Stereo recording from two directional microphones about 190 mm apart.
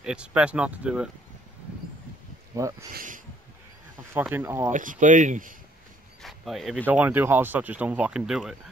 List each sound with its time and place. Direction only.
0.0 s speech: 5° right (ahead or behind)
2.5 s speech: 15° right (ahead or behind)
2.9 s speech: 45° right (ahead or behind)
4.1 s speech: 10° right (ahead or behind)
4.7 s speech: 45° right (ahead or behind)
6.2 s speech: centre (ahead or behind)